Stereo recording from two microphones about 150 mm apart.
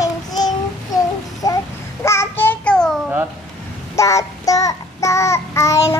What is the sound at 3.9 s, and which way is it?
Child singing, 20° left (ahead or behind).